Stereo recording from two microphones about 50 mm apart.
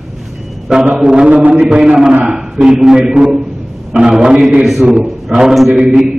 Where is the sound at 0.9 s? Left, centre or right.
Right.